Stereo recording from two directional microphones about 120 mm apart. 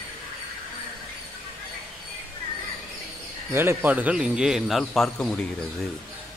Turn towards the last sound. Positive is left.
turn(degrees=5)  # may be behind; listen again after turning